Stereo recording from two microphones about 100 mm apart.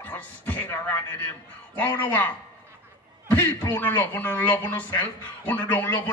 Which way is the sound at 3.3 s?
20° left (ahead or behind).